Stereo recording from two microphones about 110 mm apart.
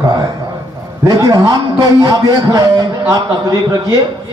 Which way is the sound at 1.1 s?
30° right (ahead or behind).